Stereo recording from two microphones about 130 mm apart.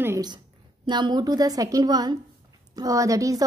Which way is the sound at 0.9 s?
35° right (ahead or behind).